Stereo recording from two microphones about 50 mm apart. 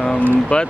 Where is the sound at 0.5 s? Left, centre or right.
Left.